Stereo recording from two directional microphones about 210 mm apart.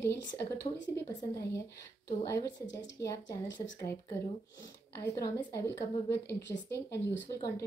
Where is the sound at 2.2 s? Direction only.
15° left (ahead or behind).